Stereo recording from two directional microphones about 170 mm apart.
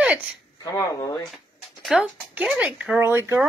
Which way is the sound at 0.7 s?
20° left (ahead or behind).